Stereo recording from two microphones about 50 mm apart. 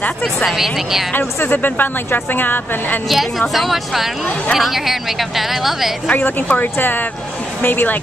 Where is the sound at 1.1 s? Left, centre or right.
Left.